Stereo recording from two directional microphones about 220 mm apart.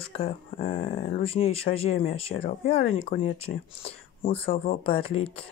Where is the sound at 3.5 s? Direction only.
50° left (ahead or behind).